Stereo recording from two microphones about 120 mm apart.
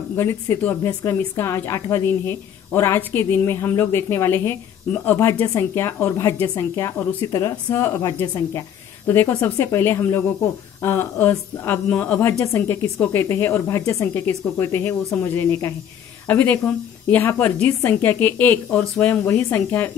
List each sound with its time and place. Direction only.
0.1 s a woman's voice: 20° left (ahead or behind)